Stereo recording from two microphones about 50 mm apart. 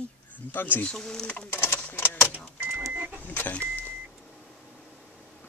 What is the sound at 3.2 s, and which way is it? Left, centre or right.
Speech, left.